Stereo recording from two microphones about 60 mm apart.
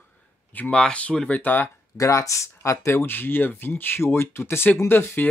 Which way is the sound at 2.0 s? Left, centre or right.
Left.